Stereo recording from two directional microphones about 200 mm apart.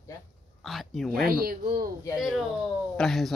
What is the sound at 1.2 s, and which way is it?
Speech, 50° right (ahead or behind).